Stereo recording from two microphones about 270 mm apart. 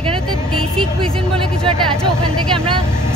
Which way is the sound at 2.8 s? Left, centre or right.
Centre.